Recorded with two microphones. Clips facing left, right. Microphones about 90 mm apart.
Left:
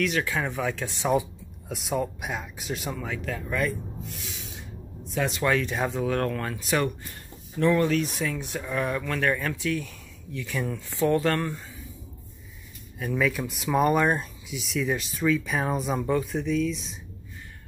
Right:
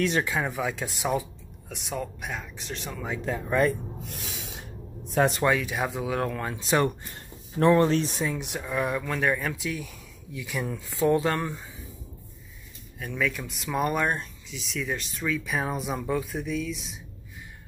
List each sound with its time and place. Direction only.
0.4 s speech: 10° right (ahead or behind)
1.7 s speech: 5° left (ahead or behind)
3.1 s speech: 25° right (ahead or behind)
4.0 s snake: 60° right (ahead or behind)
5.1 s speech: 45° right (ahead or behind)
5.4 s speech: 10° right (ahead or behind)
8.5 s speech: 10° right (ahead or behind)
13.0 s speech: 5° left (ahead or behind)